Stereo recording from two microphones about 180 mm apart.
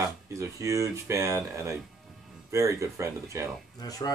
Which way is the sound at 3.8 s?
20° left (ahead or behind).